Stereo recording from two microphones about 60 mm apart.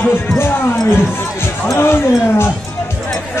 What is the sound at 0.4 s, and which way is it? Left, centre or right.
Speech, left.